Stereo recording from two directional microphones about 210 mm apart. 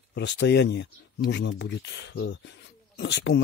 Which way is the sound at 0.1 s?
55° left (ahead or behind).